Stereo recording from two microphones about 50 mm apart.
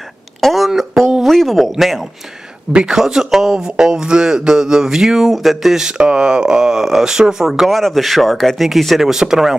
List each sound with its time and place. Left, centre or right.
0.4 s a sound: centre
1.2 s speech: centre
2.7 s speech: centre